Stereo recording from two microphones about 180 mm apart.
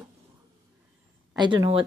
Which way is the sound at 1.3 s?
25° right (ahead or behind).